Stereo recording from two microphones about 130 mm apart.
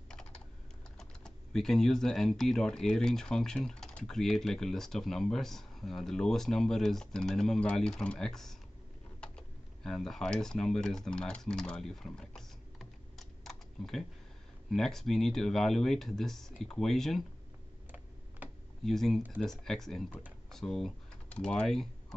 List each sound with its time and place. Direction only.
0.1 s typing: 5° left (ahead or behind)
0.9 s speech: 5° left (ahead or behind)
9.8 s speech: 5° left (ahead or behind)
13.4 s typing: 5° left (ahead or behind)
14.7 s speech: 5° left (ahead or behind)
18.9 s speech: centre (ahead or behind)